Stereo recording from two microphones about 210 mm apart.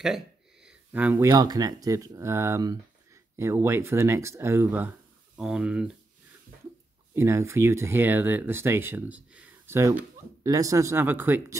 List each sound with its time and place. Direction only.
0.7 s a sound: 5° right (ahead or behind)
1.3 s speech: 20° right (ahead or behind)
7.2 s speech: 15° right (ahead or behind)